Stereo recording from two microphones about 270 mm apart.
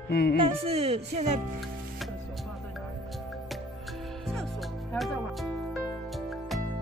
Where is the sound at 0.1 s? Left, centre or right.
Left.